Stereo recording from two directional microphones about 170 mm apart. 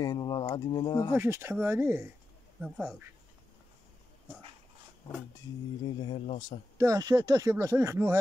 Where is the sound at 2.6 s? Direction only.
5° right (ahead or behind).